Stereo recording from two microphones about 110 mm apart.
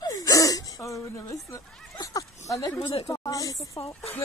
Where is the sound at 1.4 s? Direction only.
30° left (ahead or behind).